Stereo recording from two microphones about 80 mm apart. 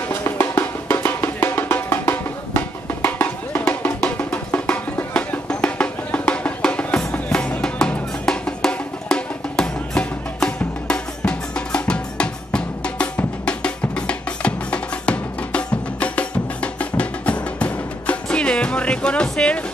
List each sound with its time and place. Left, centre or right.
0.1 s music: left; by 19.6 s centre